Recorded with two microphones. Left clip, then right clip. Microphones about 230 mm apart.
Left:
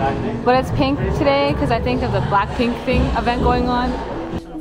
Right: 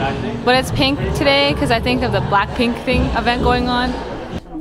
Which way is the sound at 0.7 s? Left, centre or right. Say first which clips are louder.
Right 2 dB; right.